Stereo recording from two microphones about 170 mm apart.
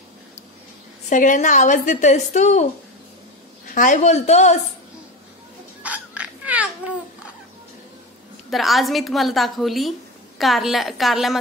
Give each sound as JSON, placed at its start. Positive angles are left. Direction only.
{"t": 1.1, "sound": "a woman's voice", "side_deg": 50}
{"t": 3.7, "sound": "a woman's voice", "side_deg": 50}
{"t": 5.8, "sound": "a sound", "side_deg": -10}
{"t": 8.5, "sound": "a woman's voice", "side_deg": 0}